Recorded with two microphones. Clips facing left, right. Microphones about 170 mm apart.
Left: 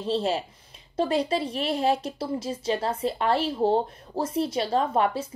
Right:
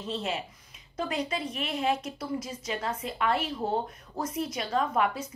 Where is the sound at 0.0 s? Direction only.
35° left (ahead or behind).